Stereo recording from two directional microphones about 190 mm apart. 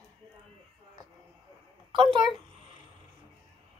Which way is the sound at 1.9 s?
25° right (ahead or behind).